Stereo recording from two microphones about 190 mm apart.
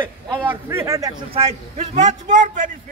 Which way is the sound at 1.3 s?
35° right (ahead or behind).